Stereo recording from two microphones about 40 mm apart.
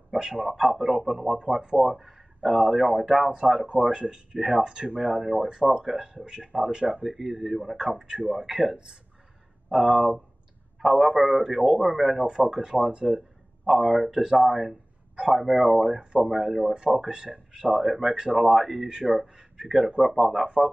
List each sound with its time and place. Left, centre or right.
0.1 s speech: centre
3.9 s speech: centre
4.6 s speech: right
5.1 s speech: centre
7.2 s a man's voice: centre
12.3 s speech: centre
13.7 s a man's voice: centre
18.1 s speech: centre
18.4 s a man's voice: centre
19.0 s speech: centre
20.0 s a man's voice: centre